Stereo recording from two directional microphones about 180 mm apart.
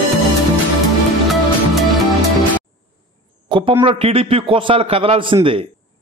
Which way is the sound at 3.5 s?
25° right (ahead or behind).